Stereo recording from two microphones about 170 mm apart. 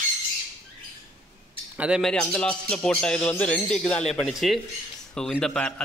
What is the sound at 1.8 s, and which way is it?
Speech, 5° right (ahead or behind).